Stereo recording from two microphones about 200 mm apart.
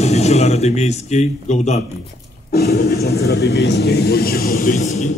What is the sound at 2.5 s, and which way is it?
Speech, 55° left (ahead or behind).